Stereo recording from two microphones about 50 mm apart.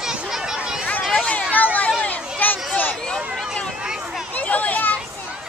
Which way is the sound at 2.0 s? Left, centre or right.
Left.